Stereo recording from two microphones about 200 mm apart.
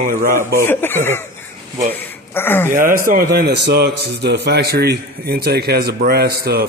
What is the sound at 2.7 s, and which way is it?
A man's voice, 40° right (ahead or behind).